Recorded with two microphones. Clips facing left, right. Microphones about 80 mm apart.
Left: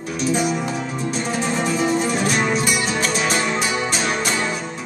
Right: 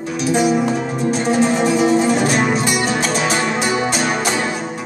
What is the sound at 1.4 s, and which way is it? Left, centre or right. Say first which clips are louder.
Music: right 5 dB; centre.